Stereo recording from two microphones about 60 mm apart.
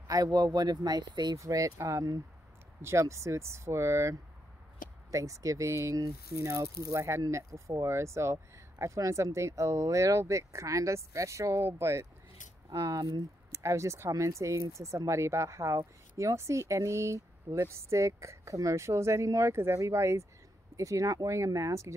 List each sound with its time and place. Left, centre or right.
0.1 s speech: right
2.8 s speech: right
5.1 s speech: right
5.9 s speech: right
6.4 s speech: right
12.7 s speech: right
13.5 s speech: right